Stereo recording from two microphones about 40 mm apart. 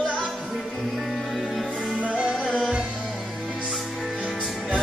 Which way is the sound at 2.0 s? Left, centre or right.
Right.